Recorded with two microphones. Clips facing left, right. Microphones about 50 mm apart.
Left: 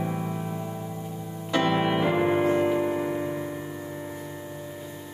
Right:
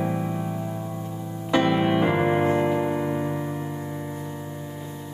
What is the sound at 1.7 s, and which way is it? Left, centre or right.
Music, centre.